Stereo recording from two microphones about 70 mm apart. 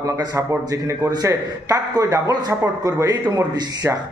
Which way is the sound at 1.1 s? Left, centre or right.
Right.